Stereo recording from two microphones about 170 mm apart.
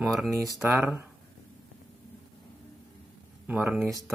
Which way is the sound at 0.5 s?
Centre (ahead or behind).